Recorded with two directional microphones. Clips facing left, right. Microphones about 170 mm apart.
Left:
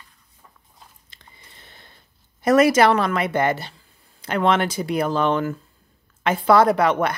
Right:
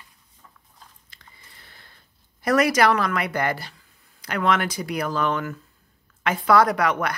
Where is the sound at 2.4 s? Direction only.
25° left (ahead or behind).